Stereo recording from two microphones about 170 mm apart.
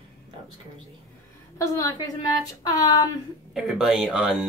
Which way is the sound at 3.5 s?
Centre (ahead or behind).